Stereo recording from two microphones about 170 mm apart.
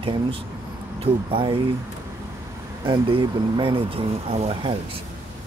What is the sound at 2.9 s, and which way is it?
Speech, 30° right (ahead or behind).